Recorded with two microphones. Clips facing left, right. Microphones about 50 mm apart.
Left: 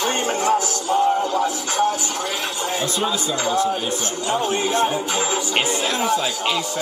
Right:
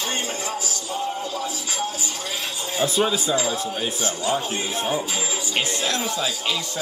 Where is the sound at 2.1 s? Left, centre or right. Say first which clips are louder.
Left 5 dB; left.